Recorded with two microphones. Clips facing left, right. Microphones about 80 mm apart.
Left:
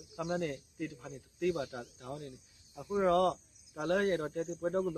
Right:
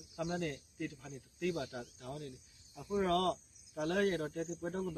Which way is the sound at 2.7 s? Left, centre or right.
Centre.